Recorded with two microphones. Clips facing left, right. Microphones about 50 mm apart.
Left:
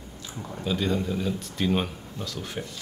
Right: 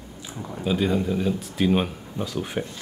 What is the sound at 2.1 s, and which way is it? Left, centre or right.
Speech, centre.